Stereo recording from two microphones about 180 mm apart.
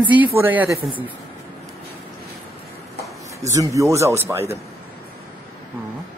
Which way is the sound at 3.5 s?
15° right (ahead or behind).